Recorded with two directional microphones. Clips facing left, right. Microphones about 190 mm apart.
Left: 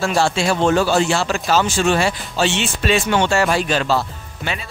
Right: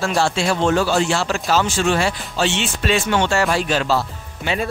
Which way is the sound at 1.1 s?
Centre (ahead or behind).